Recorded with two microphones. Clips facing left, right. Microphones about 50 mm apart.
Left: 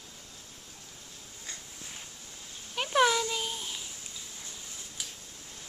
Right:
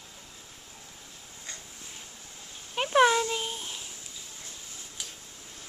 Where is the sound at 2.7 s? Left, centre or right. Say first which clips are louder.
Right 3 dB; centre.